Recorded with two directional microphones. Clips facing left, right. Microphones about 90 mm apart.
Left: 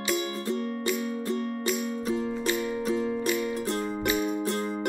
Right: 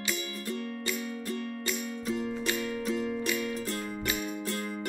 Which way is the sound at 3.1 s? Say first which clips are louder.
Left 4 dB; 25° left (ahead or behind).